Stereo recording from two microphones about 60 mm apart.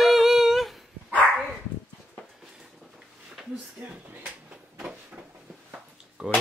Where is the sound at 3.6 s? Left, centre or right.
Right.